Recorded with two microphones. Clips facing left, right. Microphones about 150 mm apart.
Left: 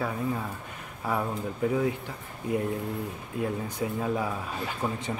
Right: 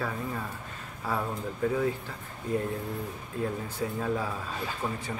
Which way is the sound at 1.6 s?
15° left (ahead or behind).